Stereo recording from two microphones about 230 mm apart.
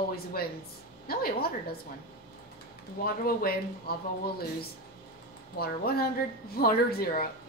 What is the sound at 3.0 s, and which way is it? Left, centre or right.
Speech, left.